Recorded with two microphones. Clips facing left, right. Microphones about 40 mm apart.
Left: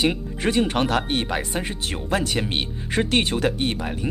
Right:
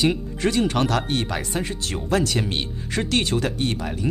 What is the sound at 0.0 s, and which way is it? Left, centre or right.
Speech, centre.